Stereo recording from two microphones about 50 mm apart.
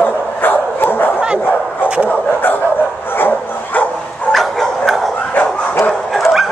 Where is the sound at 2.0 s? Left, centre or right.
Left.